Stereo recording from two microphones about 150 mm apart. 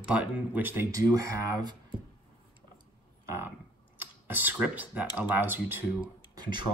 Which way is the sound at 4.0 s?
10° right (ahead or behind).